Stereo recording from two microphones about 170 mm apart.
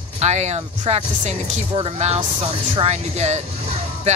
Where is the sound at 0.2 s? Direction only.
40° right (ahead or behind).